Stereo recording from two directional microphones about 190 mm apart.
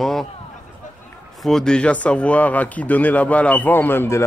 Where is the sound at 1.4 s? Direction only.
Centre (ahead or behind).